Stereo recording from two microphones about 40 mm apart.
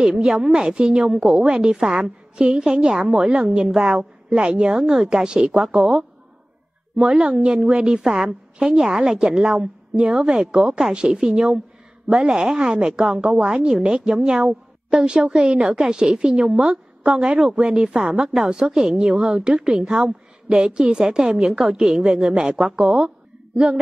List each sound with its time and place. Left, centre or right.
0.1 s a woman's voice: centre
4.7 s a woman's voice: centre
5.5 s a woman's voice: centre; by 7.8 s right
7.8 s a woman's voice: centre
18.2 s a woman's voice: centre
18.9 s a woman's voice: right
22.9 s a sound: right